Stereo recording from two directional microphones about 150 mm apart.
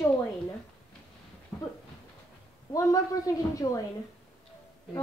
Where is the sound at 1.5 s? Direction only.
15° left (ahead or behind).